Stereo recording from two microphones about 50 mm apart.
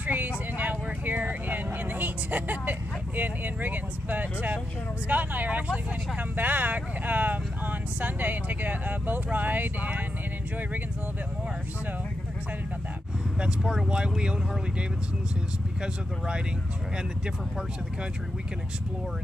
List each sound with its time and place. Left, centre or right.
0.0 s vehicle: right
5.0 s speech: right
13.4 s speech: centre